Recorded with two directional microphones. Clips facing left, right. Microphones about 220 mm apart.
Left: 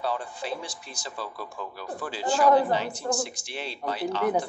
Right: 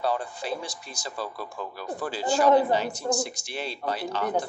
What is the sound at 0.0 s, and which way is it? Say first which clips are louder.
Speech: right 2 dB; 40° right (ahead or behind).